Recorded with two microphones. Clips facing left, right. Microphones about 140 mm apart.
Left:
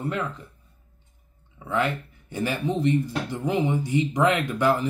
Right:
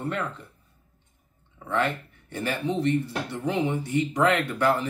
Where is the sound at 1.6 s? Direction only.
10° left (ahead or behind).